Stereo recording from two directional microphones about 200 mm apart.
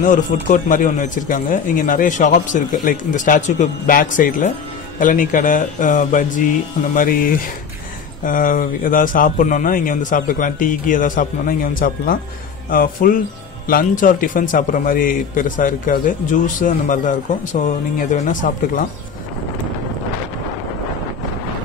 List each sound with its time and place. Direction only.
0.0 s a man's voice: 40° left (ahead or behind)